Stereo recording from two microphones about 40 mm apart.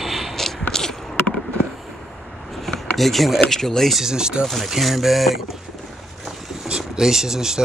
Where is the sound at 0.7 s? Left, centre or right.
Centre.